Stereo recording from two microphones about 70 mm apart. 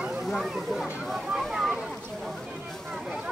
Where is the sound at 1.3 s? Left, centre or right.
Centre.